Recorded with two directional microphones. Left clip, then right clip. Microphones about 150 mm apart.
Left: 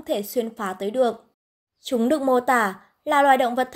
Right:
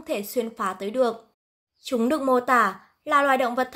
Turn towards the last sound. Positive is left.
turn(degrees=25)  # may be behind; listen again after turning